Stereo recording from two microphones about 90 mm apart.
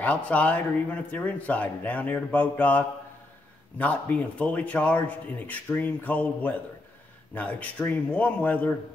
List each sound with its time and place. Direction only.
0.0 s a man's voice: 15° left (ahead or behind)